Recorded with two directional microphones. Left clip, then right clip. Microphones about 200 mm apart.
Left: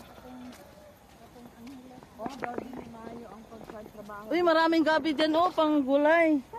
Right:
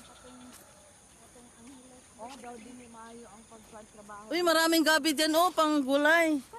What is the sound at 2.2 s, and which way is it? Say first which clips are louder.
Speech: left 6 dB; 45° left (ahead or behind).